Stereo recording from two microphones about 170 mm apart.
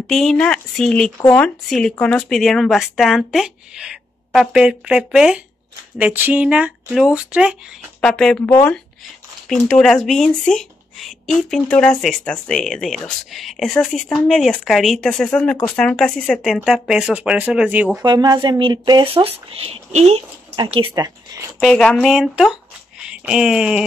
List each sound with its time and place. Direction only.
0.0 s speech: centre (ahead or behind)
18.0 s speech: 25° right (ahead or behind)
20.6 s speech: 25° right (ahead or behind)
21.5 s speech: 5° left (ahead or behind)